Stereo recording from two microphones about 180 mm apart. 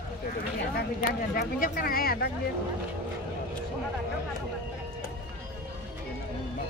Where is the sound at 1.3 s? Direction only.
55° left (ahead or behind).